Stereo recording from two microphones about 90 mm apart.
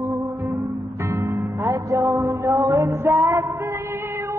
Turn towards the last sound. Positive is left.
turn(degrees=-35)  # may be behind; listen again after turning